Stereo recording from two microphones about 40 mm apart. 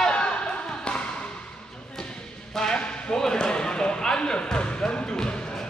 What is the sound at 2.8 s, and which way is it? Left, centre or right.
Basketball bounce, left.